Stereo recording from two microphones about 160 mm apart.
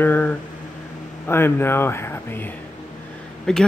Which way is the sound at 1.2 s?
15° left (ahead or behind).